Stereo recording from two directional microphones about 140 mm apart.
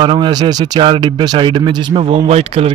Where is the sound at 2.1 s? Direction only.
50° right (ahead or behind).